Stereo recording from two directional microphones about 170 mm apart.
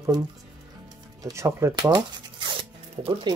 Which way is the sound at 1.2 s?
15° right (ahead or behind).